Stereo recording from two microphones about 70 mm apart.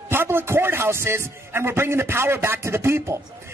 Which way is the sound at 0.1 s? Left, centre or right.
Right.